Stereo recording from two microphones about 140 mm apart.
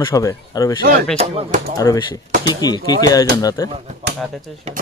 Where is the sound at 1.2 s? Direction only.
45° right (ahead or behind).